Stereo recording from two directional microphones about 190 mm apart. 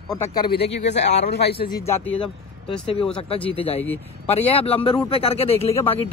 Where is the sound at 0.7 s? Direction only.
35° left (ahead or behind).